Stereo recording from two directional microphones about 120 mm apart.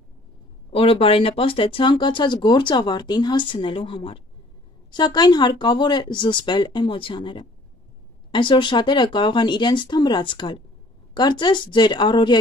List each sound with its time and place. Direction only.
0.7 s speech: 50° left (ahead or behind)
4.9 s speech: 35° left (ahead or behind)